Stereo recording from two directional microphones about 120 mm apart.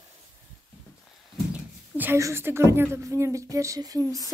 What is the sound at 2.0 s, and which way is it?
A woman's voice, 20° right (ahead or behind).